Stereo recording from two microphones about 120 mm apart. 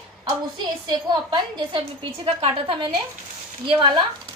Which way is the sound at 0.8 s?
40° right (ahead or behind).